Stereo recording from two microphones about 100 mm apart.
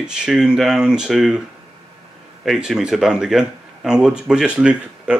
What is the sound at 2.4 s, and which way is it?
Speech, centre (ahead or behind).